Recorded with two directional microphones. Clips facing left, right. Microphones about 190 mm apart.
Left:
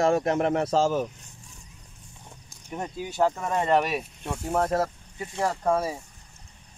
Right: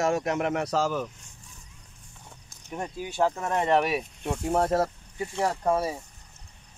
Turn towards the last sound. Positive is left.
turn(degrees=-5)  # may be behind; listen again after turning